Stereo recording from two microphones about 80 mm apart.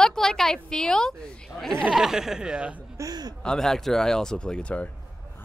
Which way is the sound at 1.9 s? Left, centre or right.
Centre.